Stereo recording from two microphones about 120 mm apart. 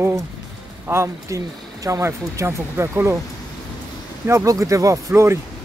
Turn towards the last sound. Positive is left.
turn(degrees=-25)  # may be behind; listen again after turning